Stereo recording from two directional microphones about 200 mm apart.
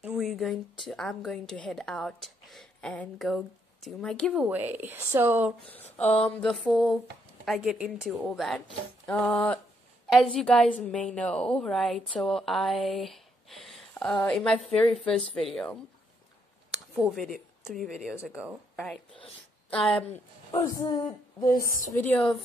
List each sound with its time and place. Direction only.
0.0 s a woman's voice: 5° right (ahead or behind)
4.5 s speech: 10° right (ahead or behind)
5.9 s a sound: 35° left (ahead or behind)
6.2 s a woman's voice: 5° left (ahead or behind)
16.7 s a sound: centre (ahead or behind)
17.6 s a woman's voice: centre (ahead or behind)
20.5 s a woman's voice: 15° left (ahead or behind)
20.8 s a sound: 20° left (ahead or behind)
21.9 s a woman's voice: 5° left (ahead or behind)